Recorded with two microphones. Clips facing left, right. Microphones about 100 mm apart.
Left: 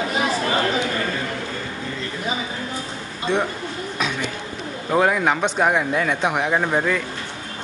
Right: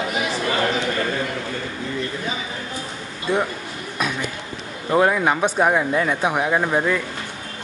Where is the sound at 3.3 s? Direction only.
10° right (ahead or behind).